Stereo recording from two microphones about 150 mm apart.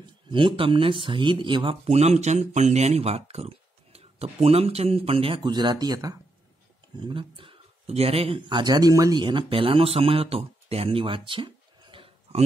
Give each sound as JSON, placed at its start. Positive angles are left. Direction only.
{"t": 0.0, "sound": "speech", "side_deg": -35}